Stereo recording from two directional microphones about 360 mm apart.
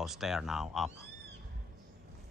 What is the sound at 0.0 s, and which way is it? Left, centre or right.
Speech, centre.